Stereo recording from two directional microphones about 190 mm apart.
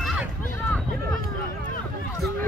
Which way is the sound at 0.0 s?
Centre (ahead or behind).